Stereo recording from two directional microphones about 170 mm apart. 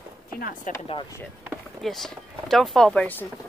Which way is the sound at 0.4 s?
55° left (ahead or behind).